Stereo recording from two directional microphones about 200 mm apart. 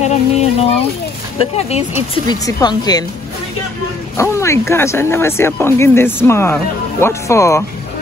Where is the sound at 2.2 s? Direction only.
20° left (ahead or behind).